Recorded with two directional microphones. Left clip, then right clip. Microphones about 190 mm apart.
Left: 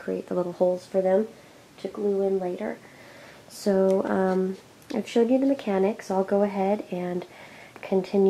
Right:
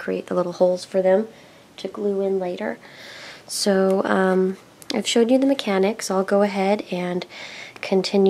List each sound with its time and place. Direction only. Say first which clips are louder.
0.0 s speech: right 5 dB; 35° right (ahead or behind)